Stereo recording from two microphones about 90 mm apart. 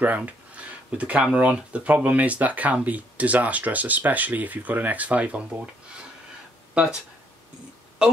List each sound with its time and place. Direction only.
0.0 s speech: 20° right (ahead or behind)
6.7 s speech: 10° right (ahead or behind)
8.0 s speech: 10° right (ahead or behind)